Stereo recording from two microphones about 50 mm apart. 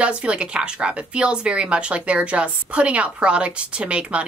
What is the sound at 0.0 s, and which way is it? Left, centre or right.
Speech, right.